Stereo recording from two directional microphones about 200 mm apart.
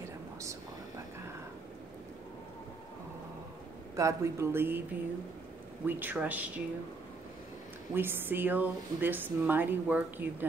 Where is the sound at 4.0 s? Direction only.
15° right (ahead or behind).